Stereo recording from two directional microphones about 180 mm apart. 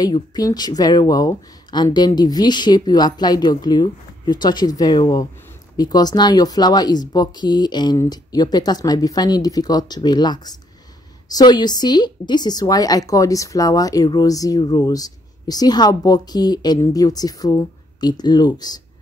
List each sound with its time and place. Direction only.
0.0 s speech: 20° left (ahead or behind)